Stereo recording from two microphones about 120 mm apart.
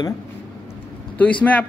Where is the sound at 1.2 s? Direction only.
10° left (ahead or behind).